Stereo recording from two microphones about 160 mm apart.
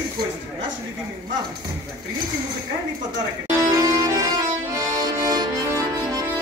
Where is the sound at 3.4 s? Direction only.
20° right (ahead or behind).